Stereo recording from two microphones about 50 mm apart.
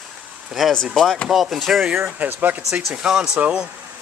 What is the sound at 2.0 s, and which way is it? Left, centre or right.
Speech, right.